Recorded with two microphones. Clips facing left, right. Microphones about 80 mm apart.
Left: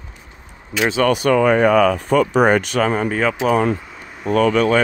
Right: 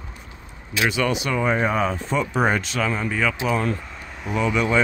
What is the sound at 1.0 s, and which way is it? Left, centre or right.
Speech, left.